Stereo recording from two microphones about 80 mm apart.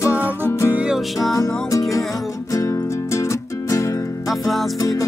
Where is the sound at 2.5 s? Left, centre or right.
Left.